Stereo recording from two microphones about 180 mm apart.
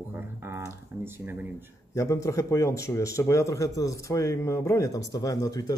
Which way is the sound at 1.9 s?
15° left (ahead or behind).